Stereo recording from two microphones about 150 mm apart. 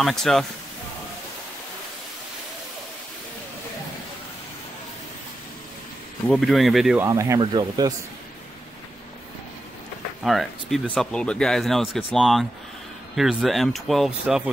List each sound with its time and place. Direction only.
0.0 s speech: centre (ahead or behind)
6.2 s speech: centre (ahead or behind)
7.0 s speech: 20° right (ahead or behind)
10.2 s speech: centre (ahead or behind)